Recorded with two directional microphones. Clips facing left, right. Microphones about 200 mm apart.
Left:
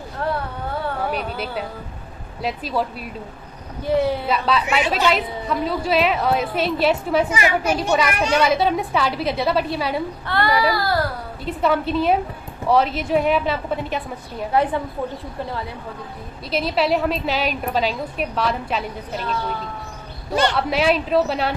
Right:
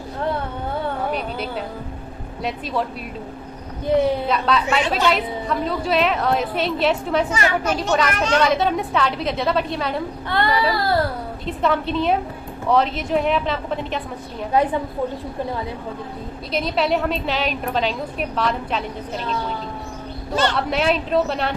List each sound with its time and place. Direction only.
1.1 s a woman's voice: 5° left (ahead or behind)
3.8 s a woman's voice: 20° right (ahead or behind)
4.3 s a woman's voice: 5° left (ahead or behind)
10.2 s a woman's voice: 20° right (ahead or behind)
11.4 s a woman's voice: 5° left (ahead or behind)
14.5 s a woman's voice: 20° right (ahead or behind)
16.5 s a woman's voice: 5° left (ahead or behind)
20.5 s a woman's voice: 5° left (ahead or behind)